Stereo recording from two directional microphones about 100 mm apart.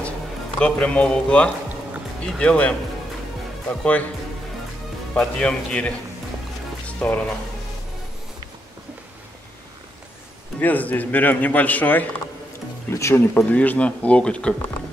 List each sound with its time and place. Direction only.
0.6 s a man's voice: 15° left (ahead or behind)
5.1 s a man's voice: 10° left (ahead or behind)
7.0 s speech: 5° left (ahead or behind)
10.6 s a man's voice: 15° left (ahead or behind)